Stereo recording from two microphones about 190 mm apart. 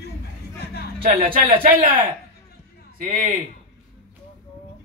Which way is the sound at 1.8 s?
50° right (ahead or behind).